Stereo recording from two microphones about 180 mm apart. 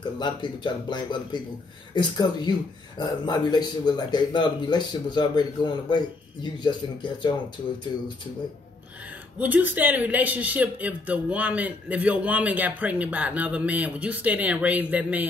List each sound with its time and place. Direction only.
0.2 s speech: 25° left (ahead or behind)
9.4 s a man's voice: 10° right (ahead or behind)